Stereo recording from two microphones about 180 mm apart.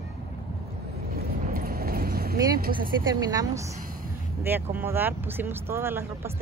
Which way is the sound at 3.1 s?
20° right (ahead or behind).